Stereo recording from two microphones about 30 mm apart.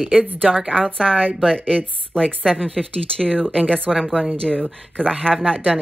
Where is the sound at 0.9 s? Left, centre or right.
Left.